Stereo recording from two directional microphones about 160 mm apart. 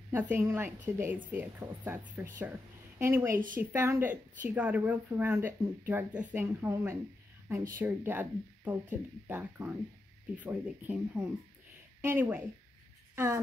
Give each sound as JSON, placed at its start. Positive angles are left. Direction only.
{"t": 0.3, "sound": "a woman's voice", "side_deg": -15}
{"t": 3.3, "sound": "speech", "side_deg": -60}
{"t": 3.7, "sound": "a woman's voice", "side_deg": -15}